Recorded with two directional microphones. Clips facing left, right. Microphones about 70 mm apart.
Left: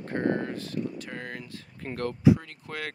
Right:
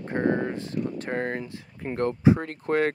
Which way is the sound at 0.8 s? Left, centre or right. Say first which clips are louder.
Right 7 dB; right.